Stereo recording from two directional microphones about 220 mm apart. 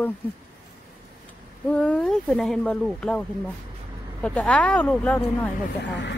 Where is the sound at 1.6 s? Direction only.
5° left (ahead or behind).